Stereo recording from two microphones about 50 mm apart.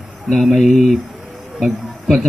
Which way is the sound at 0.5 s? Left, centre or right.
Centre.